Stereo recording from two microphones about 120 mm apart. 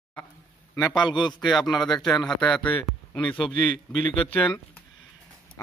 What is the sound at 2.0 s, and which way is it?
Speech, 5° left (ahead or behind).